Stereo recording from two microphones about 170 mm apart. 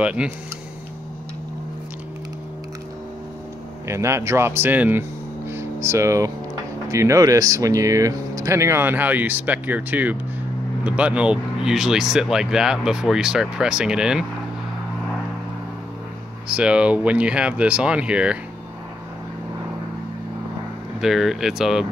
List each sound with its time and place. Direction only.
0.0 s speech: 5° right (ahead or behind)
3.8 s speech: 15° right (ahead or behind)
5.5 s a sound: 15° right (ahead or behind)
6.9 s speech: 15° right (ahead or behind)
16.4 s speech: 5° right (ahead or behind)
21.0 s speech: centre (ahead or behind)